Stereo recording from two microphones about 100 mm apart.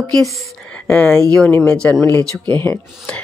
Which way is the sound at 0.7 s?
10° left (ahead or behind).